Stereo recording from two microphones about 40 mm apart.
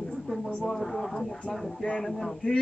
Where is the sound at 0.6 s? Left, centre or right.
Centre.